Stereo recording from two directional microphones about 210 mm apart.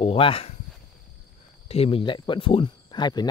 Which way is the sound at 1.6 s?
30° left (ahead or behind).